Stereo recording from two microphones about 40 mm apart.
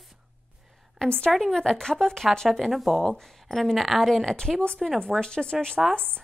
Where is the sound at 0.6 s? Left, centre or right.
Centre.